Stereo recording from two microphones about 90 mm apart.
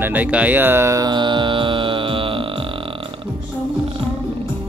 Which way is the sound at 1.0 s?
60° right (ahead or behind).